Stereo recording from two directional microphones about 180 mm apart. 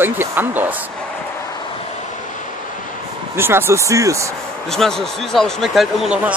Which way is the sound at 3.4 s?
15° right (ahead or behind).